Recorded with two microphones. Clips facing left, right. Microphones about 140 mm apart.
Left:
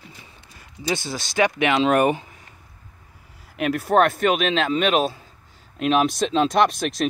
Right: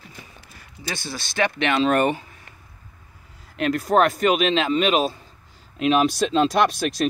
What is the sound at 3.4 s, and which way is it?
Speech, 5° left (ahead or behind).